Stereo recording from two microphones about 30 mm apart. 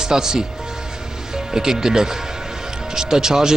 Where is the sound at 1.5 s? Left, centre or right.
Centre.